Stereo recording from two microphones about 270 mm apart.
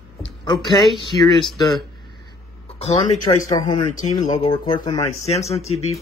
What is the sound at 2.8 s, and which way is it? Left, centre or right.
Speech, left.